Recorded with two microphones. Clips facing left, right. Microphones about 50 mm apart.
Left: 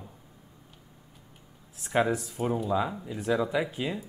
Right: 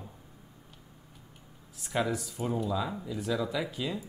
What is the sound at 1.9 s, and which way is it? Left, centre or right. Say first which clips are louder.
Speech: left 5 dB; left.